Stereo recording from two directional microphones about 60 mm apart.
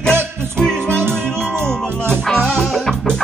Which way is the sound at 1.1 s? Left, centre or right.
Centre.